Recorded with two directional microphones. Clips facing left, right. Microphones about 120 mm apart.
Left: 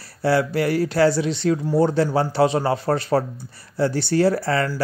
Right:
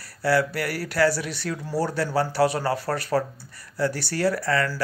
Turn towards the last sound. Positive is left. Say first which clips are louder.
# left 3 dB
turn(degrees=25)  # may be behind; listen again after turning